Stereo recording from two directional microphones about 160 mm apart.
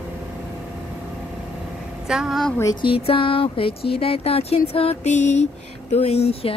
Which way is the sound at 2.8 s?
35° left (ahead or behind).